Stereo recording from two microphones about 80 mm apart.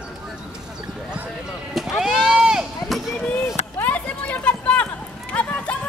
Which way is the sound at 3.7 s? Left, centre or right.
Left.